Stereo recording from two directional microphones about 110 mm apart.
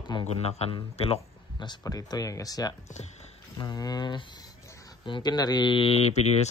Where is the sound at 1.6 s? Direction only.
40° left (ahead or behind); by 6.5 s 75° left (ahead or behind).